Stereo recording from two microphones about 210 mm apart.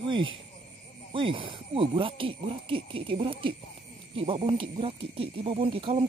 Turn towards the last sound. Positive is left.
turn(degrees=-25)  # may be behind; listen again after turning